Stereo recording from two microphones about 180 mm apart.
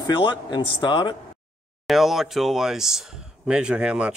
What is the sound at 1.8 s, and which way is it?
Speech, centre (ahead or behind).